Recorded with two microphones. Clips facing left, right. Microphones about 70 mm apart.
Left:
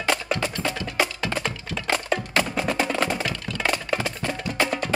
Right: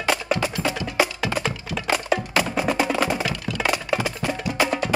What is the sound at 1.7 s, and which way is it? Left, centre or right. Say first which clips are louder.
Wood block: right 2 dB; centre.